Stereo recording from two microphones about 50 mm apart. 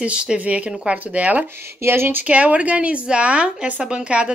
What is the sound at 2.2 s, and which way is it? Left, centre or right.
A woman's voice, right.